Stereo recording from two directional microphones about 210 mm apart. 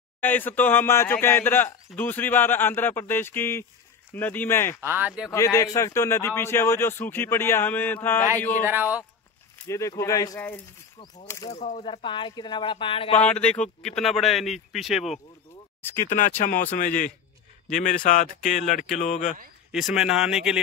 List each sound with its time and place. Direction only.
0.2 s speech: 10° left (ahead or behind)
4.8 s speech: 10° right (ahead or behind)
5.3 s speech: 15° left (ahead or behind)
8.6 s speech: 10° right (ahead or behind)
9.7 s speech: 15° left (ahead or behind)
11.5 s speech: 35° left (ahead or behind)
13.2 s speech: 5° left (ahead or behind)
15.8 s speech: 10° left (ahead or behind)
16.2 s speech: 40° left (ahead or behind)
19.7 s speech: centre (ahead or behind)